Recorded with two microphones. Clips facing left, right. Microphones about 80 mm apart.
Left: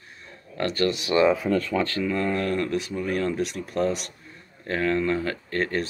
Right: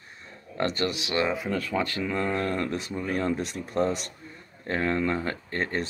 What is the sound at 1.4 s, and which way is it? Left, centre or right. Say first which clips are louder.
Speech: left 4 dB; centre.